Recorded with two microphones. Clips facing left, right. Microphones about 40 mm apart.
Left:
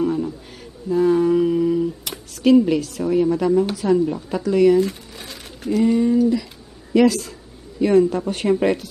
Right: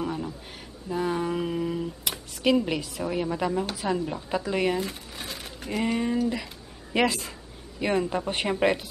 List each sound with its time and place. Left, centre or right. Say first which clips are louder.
0.0 s a sound: left 9 dB; centre
0.8 s speech: left 11 dB; centre
4.4 s speech: left 11 dB; right
4.7 s crumpling: left 11 dB; centre
5.7 s speech: left 9 dB; right